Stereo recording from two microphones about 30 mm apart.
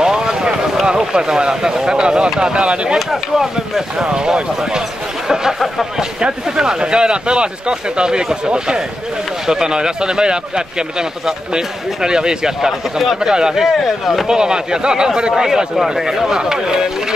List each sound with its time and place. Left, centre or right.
0.0 s a sound: right
0.8 s speech: right
3.1 s speech: centre
4.0 s speech: right
6.5 s speech: right
13.8 s speech: centre
14.2 s speech: right